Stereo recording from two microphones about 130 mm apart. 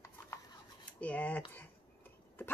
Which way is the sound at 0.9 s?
10° left (ahead or behind).